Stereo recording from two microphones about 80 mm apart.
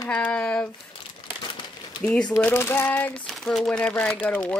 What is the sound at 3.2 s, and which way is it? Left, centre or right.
Speech, centre.